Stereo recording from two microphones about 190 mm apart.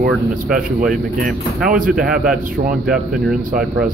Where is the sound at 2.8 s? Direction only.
5° right (ahead or behind).